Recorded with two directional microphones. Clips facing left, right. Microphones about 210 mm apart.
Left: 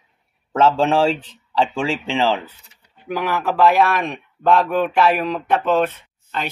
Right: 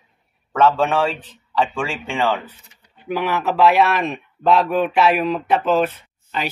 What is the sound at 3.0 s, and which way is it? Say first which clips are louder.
Speech: right 1 dB; 5° right (ahead or behind).